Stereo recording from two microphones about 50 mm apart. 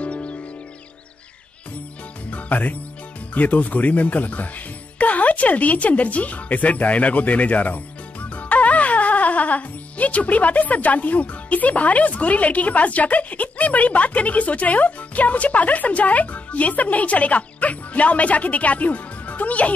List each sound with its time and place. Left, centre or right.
0.0 s music: left
2.3 s speech: left